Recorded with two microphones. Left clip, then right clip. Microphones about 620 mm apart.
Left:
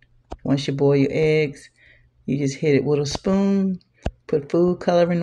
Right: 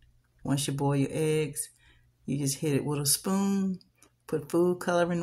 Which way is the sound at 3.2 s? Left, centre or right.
Right.